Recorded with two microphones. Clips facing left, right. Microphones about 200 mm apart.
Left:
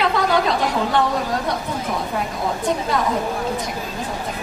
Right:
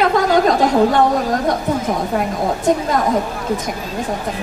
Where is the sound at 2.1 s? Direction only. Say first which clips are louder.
Right 5 dB; 45° right (ahead or behind).